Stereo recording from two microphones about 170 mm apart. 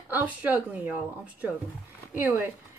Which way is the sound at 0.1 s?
10° right (ahead or behind).